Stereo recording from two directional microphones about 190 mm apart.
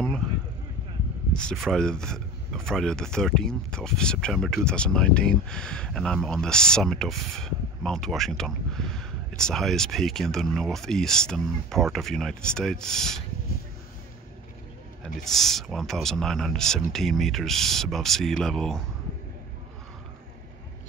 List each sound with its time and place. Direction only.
0.2 s a sound: 5° left (ahead or behind)
1.3 s speech: 5° left (ahead or behind)
15.0 s speech: centre (ahead or behind)